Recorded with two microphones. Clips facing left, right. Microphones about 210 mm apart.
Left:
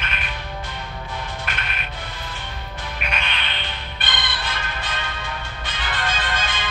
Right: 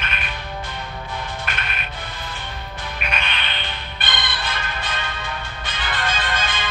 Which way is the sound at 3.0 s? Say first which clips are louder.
Right 1 dB; 55° right (ahead or behind).